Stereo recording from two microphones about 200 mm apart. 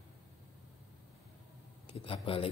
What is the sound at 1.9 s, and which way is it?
Speech, 25° left (ahead or behind).